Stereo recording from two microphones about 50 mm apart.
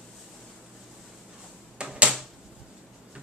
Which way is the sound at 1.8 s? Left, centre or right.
Centre.